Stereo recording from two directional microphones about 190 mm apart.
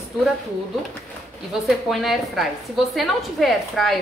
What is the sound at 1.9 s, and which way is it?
A woman's voice, centre (ahead or behind).